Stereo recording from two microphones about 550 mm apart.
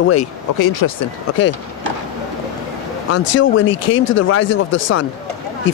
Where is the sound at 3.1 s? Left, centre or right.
Left.